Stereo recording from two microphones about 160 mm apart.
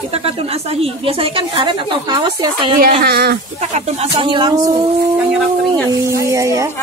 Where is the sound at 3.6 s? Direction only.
45° right (ahead or behind).